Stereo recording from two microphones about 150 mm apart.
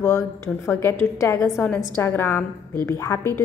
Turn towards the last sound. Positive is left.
turn(degrees=15)  # may be behind; listen again after turning